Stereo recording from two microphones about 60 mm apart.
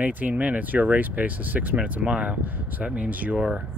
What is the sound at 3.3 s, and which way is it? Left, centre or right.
Speech, centre.